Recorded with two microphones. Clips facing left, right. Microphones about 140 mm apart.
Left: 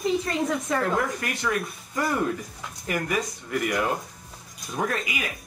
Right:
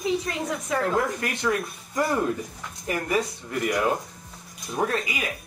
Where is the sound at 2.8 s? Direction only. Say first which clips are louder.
Right 2 dB; 30° right (ahead or behind).